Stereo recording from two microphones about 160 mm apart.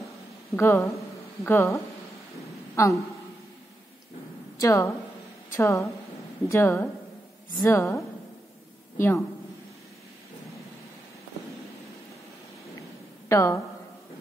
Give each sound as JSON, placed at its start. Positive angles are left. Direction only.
{"t": 0.6, "sound": "a woman's voice", "side_deg": 15}
{"t": 4.6, "sound": "a woman's voice", "side_deg": 20}
{"t": 13.3, "sound": "a woman's voice", "side_deg": 20}